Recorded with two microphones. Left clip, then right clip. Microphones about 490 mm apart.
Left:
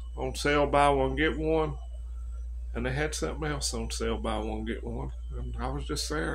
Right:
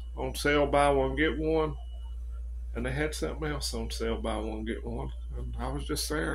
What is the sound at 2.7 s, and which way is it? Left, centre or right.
Speech, right.